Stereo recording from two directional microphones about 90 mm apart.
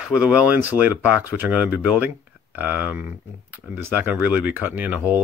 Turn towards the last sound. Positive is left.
turn(degrees=-20)  # may be behind; listen again after turning